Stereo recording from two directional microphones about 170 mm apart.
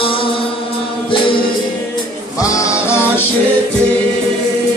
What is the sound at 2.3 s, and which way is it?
Music, 20° left (ahead or behind).